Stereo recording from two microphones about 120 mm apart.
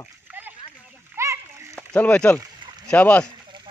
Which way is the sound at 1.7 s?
10° left (ahead or behind).